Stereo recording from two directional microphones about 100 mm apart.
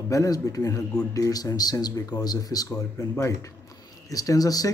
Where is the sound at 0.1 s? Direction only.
35° left (ahead or behind).